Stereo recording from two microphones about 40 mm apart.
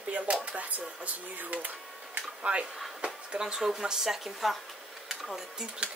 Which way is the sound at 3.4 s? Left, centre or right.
Centre.